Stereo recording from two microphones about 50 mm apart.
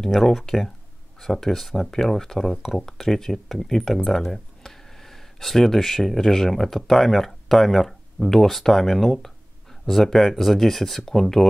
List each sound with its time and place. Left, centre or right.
0.0 s speech: centre